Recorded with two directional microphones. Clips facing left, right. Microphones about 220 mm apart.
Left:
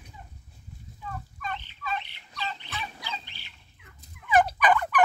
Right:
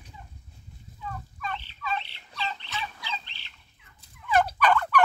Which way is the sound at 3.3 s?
10° left (ahead or behind).